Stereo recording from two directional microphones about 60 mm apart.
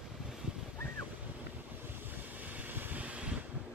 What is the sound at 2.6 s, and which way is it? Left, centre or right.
Vehicle, right.